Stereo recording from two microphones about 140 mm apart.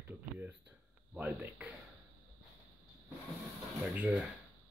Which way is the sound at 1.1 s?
10° right (ahead or behind).